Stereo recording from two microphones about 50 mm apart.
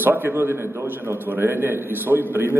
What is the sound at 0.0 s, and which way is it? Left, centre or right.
A man's voice, right.